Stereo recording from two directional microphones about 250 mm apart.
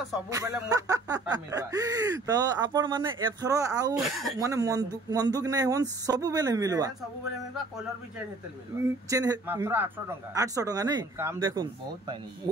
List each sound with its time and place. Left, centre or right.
0.3 s speech: centre
4.0 s speech: centre
4.4 s speech: centre
9.1 s speech: centre